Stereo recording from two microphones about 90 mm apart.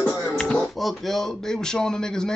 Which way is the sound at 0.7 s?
Centre (ahead or behind).